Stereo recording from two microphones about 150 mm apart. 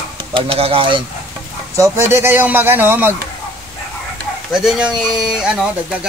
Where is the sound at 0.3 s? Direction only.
35° right (ahead or behind).